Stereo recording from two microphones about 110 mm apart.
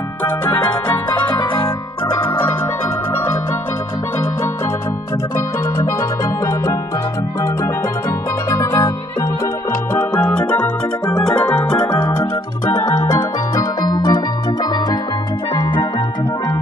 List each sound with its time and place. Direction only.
5.8 s music: 30° left (ahead or behind)
8.5 s music: 30° left (ahead or behind)
9.9 s organ: 10° left (ahead or behind)
11.8 s keyboard: 35° left (ahead or behind)
13.1 s organ: 35° left (ahead or behind)